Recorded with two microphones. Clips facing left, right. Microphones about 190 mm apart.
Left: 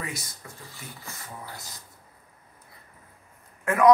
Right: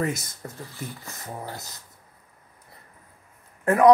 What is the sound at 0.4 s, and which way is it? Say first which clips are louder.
Speech: right 8 dB; 40° right (ahead or behind).